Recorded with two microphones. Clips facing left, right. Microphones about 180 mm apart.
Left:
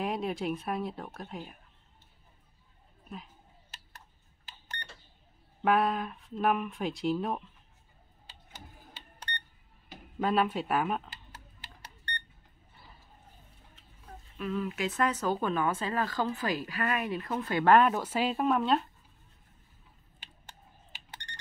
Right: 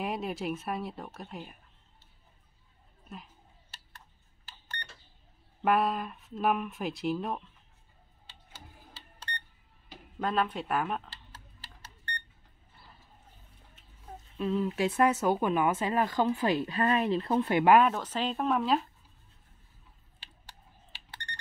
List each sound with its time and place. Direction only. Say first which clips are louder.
0.0 s speech: left 1 dB; centre (ahead or behind)
5.6 s speech: even; centre (ahead or behind)
10.1 s speech: left 2 dB; 5° left (ahead or behind)
14.4 s speech: right 4 dB; 25° right (ahead or behind)
17.6 s speech: even; 5° right (ahead or behind)
17.9 s speech: left 2 dB; 10° left (ahead or behind)